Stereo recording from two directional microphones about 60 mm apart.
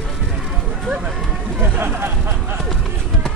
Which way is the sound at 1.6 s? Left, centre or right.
Right.